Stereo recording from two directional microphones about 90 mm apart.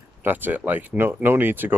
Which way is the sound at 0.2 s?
20° right (ahead or behind).